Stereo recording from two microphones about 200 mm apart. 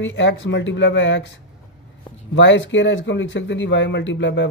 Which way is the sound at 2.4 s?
65° left (ahead or behind).